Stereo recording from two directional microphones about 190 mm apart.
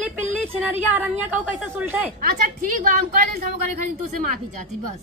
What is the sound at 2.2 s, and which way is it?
A woman's voice, 45° right (ahead or behind).